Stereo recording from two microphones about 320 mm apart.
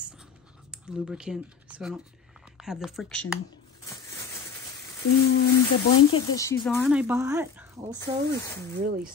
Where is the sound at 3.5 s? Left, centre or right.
Centre.